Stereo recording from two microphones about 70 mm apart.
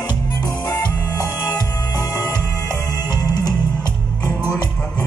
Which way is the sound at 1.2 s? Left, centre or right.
Left.